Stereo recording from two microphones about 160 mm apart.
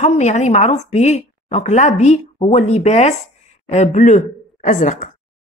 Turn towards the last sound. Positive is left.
turn(degrees=50)  # may be behind; listen again after turning